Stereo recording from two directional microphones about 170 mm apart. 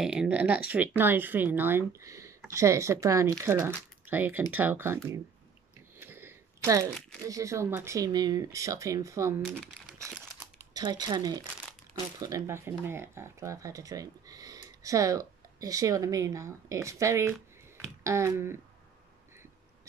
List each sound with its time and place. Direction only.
0.0 s speech: 5° right (ahead or behind)
5.9 s a sound: 15° right (ahead or behind)
7.2 s speech: 20° right (ahead or behind)
10.6 s a woman's voice: 20° right (ahead or behind)